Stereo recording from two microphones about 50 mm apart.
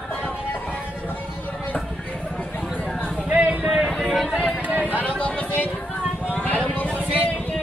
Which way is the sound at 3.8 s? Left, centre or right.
Centre.